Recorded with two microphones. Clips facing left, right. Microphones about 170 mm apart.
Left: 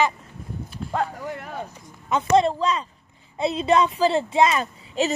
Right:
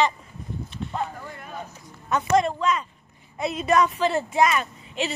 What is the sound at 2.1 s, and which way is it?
Speech, 25° left (ahead or behind).